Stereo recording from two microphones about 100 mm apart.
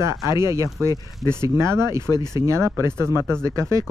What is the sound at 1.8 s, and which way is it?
Speech, 45° left (ahead or behind).